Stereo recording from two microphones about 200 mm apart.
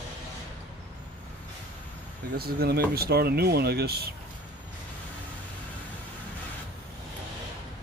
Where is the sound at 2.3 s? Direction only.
50° right (ahead or behind).